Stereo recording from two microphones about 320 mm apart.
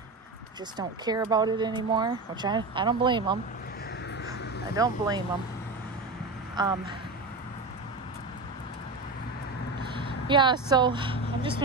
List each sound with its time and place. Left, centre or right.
0.7 s speech: centre
4.7 s speech: centre
6.5 s speech: centre
10.2 s speech: centre